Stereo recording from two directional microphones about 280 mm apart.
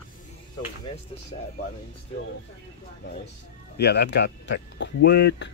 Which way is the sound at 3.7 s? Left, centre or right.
Left.